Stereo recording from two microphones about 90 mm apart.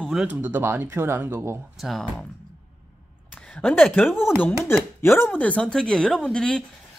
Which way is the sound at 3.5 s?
15° left (ahead or behind).